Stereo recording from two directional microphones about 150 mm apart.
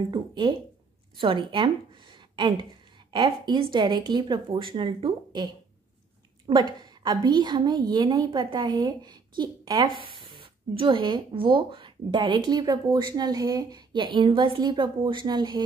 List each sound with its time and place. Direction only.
0.1 s a woman's voice: 30° right (ahead or behind)